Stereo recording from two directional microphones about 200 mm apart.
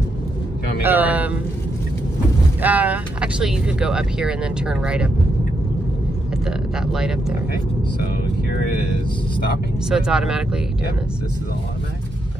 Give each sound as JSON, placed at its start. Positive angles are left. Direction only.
{"t": 0.8, "sound": "speech", "side_deg": -10}
{"t": 2.6, "sound": "speech", "side_deg": -5}
{"t": 6.4, "sound": "speech", "side_deg": -5}
{"t": 9.8, "sound": "speech", "side_deg": -5}